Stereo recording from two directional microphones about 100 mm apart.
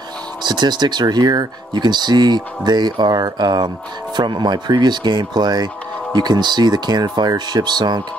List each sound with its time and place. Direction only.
0.4 s speech: 45° right (ahead or behind)